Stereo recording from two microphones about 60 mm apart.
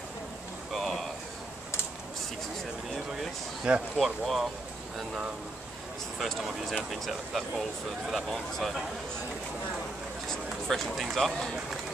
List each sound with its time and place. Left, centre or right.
0.7 s a sound: centre
3.7 s speech: centre
4.0 s speech: centre
6.1 s speech: centre
10.2 s speech: centre